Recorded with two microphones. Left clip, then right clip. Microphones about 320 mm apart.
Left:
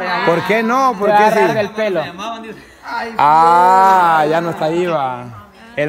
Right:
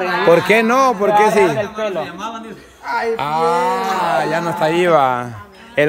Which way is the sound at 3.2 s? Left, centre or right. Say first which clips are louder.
Left 11 dB; centre.